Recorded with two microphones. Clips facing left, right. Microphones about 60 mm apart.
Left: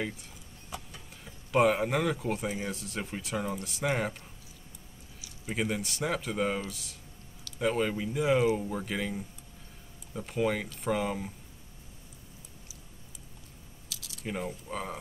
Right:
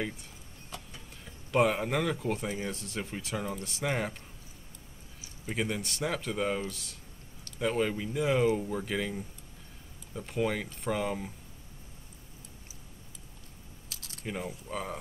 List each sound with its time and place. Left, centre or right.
0.7 s speech: centre
5.5 s speech: centre
13.8 s keys jangling: right
14.2 s speech: centre